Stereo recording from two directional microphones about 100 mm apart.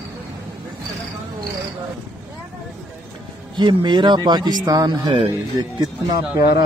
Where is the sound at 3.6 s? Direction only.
55° right (ahead or behind).